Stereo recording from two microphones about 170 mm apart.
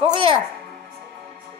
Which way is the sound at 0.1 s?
30° right (ahead or behind).